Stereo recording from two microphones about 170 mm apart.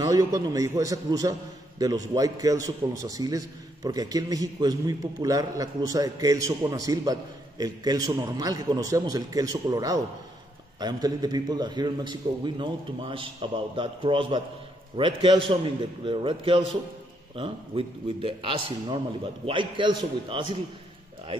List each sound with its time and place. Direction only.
0.0 s a man's voice: 20° right (ahead or behind)